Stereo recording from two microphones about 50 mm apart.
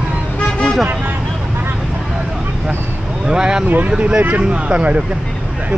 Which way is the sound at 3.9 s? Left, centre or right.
Right.